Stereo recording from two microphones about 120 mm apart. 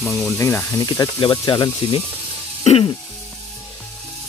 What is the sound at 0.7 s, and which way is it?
Speech, 30° left (ahead or behind).